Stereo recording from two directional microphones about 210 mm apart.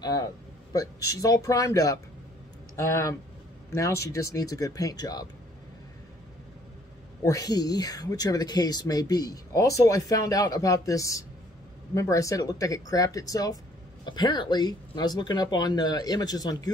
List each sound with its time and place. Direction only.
0.0 s a man's voice: 20° left (ahead or behind)
7.2 s speech: 15° left (ahead or behind)